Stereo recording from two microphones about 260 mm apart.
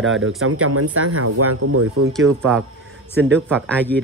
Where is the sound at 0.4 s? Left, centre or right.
Right.